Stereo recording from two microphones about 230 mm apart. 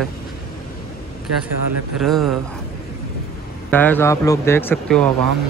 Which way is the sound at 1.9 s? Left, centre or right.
Centre.